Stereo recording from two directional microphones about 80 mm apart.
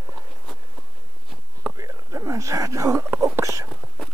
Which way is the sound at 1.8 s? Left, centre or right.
Right.